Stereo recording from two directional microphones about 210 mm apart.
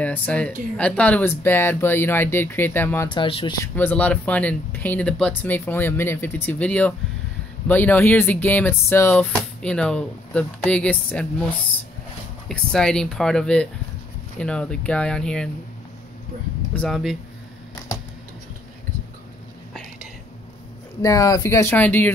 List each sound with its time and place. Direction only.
0.0 s speech: 5° left (ahead or behind)
3.1 s speech: 25° left (ahead or behind); by 11.4 s 5° left (ahead or behind)
12.4 s speech: 5° left (ahead or behind)
16.7 s speech: centre (ahead or behind)
19.7 s whispering: centre (ahead or behind)
21.0 s speech: 15° left (ahead or behind)